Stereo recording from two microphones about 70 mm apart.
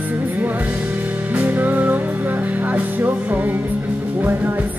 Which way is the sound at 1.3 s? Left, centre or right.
Right.